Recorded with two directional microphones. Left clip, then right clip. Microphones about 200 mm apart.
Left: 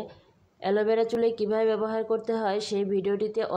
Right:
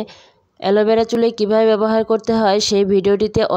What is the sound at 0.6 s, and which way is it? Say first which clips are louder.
Speech: right 10 dB; 45° right (ahead or behind).